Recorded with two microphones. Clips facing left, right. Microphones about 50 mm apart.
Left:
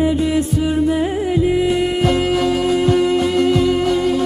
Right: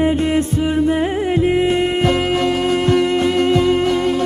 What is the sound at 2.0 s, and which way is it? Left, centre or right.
Music, centre.